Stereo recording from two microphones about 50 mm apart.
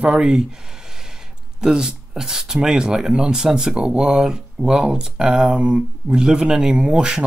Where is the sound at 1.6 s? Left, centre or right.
Centre.